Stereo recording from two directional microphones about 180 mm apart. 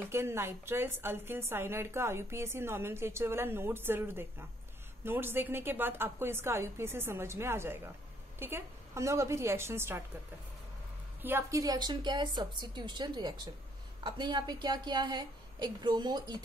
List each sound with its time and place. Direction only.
0.1 s a woman's voice: 15° right (ahead or behind)
11.2 s a woman's voice: 15° right (ahead or behind)